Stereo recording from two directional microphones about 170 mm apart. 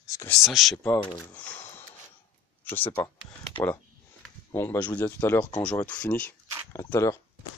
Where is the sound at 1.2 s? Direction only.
10° left (ahead or behind).